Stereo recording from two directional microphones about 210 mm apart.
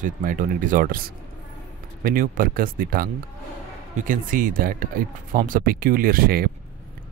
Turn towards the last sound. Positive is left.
turn(degrees=-45)  # may be behind; listen again after turning